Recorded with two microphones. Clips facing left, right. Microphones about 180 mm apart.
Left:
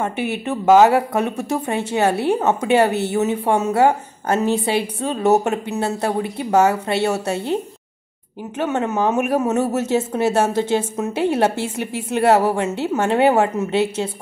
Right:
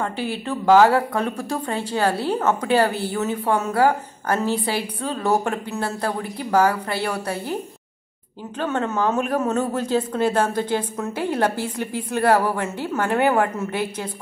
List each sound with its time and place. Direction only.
0.0 s speech: 20° left (ahead or behind)